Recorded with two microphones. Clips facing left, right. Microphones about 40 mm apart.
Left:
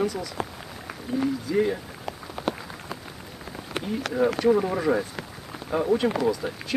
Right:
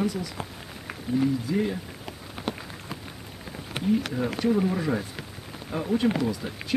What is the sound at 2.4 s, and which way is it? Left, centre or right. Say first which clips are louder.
Rain on surface: left 3 dB; centre.